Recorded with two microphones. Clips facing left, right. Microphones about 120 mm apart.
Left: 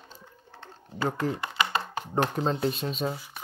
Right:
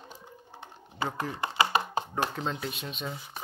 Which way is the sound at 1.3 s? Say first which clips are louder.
Right 2 dB; 25° right (ahead or behind).